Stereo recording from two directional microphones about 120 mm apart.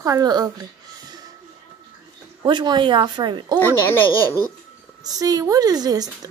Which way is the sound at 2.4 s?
40° right (ahead or behind).